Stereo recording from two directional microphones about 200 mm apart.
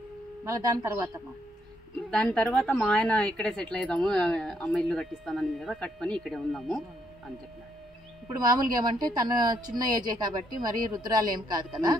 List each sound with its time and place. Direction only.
0.5 s speech: 15° right (ahead or behind)
2.0 s a woman's voice: 5° left (ahead or behind)
8.3 s speech: 20° right (ahead or behind)